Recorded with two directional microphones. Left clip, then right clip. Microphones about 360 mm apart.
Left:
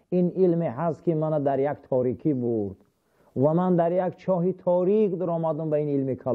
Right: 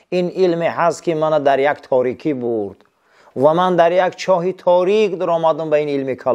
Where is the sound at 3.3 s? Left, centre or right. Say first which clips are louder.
Right 10 dB; centre.